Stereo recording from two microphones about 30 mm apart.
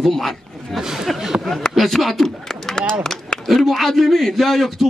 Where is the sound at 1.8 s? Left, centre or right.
Centre.